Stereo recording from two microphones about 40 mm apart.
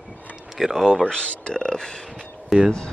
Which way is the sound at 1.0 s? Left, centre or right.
Left.